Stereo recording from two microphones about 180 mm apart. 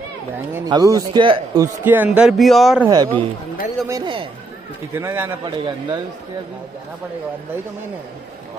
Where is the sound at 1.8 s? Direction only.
10° right (ahead or behind).